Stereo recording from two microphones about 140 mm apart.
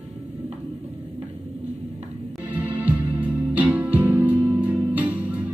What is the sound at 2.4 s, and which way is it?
Music, 10° right (ahead or behind).